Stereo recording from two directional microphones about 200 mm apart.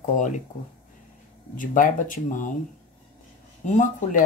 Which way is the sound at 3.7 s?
40° left (ahead or behind).